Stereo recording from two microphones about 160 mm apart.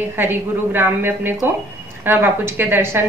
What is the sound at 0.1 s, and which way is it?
A woman's voice, 15° right (ahead or behind).